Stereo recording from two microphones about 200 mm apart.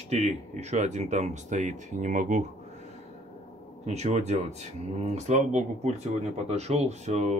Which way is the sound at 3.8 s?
35° right (ahead or behind).